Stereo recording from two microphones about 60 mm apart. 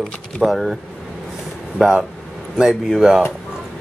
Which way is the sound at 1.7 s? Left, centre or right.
Centre.